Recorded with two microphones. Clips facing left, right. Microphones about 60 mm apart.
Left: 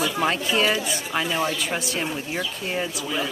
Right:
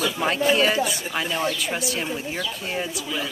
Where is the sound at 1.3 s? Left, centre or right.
Centre.